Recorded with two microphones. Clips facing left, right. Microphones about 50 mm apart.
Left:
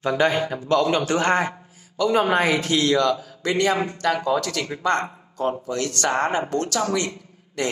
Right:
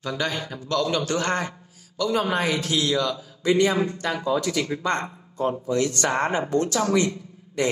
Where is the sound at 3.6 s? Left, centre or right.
Left.